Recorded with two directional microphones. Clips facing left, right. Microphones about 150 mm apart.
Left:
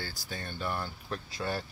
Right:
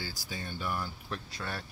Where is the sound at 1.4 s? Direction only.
20° left (ahead or behind).